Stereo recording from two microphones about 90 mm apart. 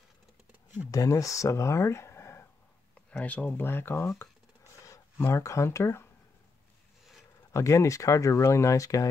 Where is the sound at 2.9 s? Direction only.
15° left (ahead or behind).